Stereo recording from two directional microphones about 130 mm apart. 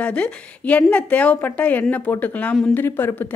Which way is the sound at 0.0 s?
10° left (ahead or behind).